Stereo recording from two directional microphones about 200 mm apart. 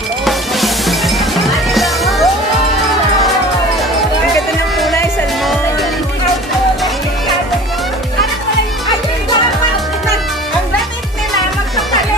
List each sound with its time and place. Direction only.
0.2 s music: centre (ahead or behind)
5.4 s music: centre (ahead or behind)